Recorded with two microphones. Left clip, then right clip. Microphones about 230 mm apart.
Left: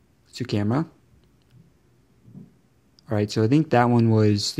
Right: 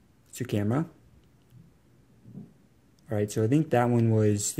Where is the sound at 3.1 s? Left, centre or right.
Centre.